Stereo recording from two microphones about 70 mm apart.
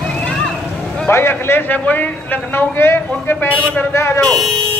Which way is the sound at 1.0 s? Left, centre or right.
Left.